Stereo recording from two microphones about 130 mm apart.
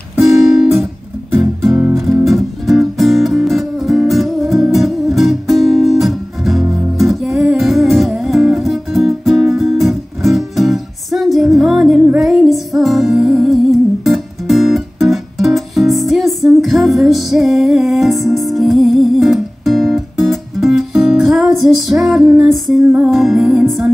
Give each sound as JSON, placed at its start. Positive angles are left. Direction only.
{"t": 1.4, "sound": "music", "side_deg": 0}